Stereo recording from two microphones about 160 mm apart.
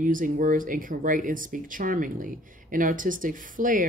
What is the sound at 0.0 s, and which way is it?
Speech, 55° right (ahead or behind).